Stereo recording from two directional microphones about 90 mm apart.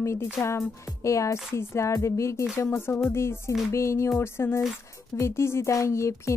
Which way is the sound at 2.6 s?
30° left (ahead or behind).